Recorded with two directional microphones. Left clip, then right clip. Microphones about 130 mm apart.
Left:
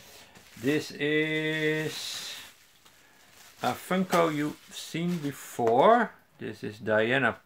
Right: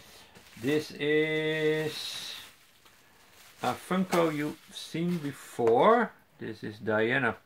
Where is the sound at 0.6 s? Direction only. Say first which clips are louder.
Left 1 dB; 35° left (ahead or behind).